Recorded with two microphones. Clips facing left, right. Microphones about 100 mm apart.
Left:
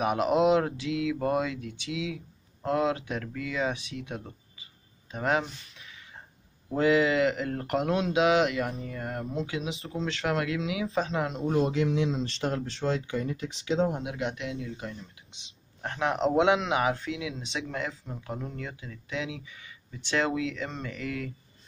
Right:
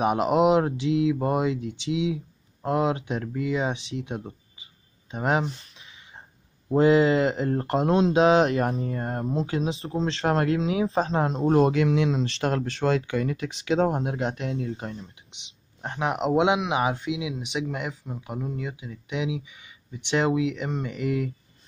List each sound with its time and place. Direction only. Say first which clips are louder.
0.0 s speech: right 3 dB; 25° right (ahead or behind)
5.8 s a sound: right 1 dB; 25° right (ahead or behind)
6.7 s speech: right 5 dB; 30° right (ahead or behind)
11.6 s speech: right 5 dB; 75° right (ahead or behind); by 15.0 s 35° right (ahead or behind)
15.3 s speech: right 1 dB; 20° right (ahead or behind)